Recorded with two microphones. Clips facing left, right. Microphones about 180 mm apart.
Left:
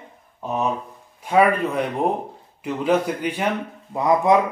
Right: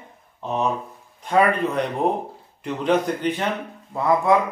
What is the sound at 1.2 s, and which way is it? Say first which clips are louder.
Speech: left 1 dB; 10° left (ahead or behind).